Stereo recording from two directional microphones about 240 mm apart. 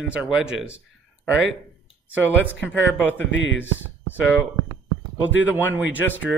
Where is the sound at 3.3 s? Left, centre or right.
Left.